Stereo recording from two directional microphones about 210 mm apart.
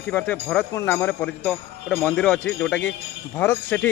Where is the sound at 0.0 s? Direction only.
5° left (ahead or behind).